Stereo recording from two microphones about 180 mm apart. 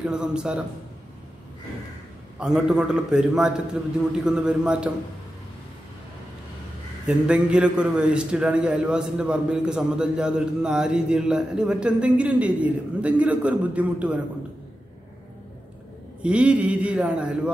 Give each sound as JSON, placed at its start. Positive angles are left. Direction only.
{"t": 0.0, "sound": "a man's voice", "side_deg": -5}
{"t": 2.3, "sound": "a man's voice", "side_deg": -5}
{"t": 7.1, "sound": "a man's voice", "side_deg": -5}
{"t": 16.2, "sound": "a man's voice", "side_deg": -5}